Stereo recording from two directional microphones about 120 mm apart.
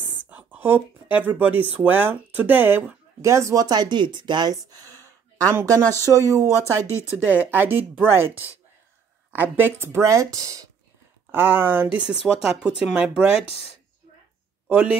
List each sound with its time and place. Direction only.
0.3 s speech: 15° right (ahead or behind)
6.8 s speech: 25° left (ahead or behind)
7.2 s speech: 15° right (ahead or behind); by 10.7 s 30° right (ahead or behind)
11.3 s speech: 15° right (ahead or behind)
14.7 s speech: 10° right (ahead or behind)